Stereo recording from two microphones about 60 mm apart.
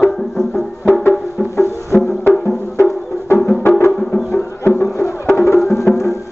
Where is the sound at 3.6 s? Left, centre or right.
Left.